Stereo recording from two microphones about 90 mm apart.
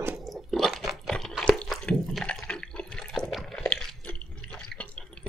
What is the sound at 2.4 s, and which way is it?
Water, 10° left (ahead or behind).